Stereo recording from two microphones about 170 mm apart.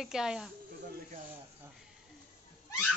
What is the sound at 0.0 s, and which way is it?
Speech, 5° right (ahead or behind).